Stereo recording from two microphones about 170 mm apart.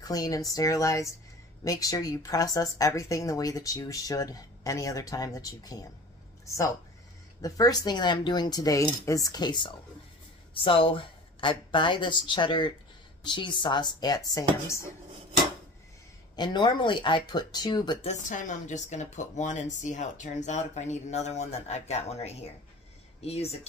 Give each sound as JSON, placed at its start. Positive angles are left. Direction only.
{"t": 0.0, "sound": "speech", "side_deg": 20}
{"t": 16.3, "sound": "speech", "side_deg": 25}
{"t": 18.0, "sound": "a woman's voice", "side_deg": 45}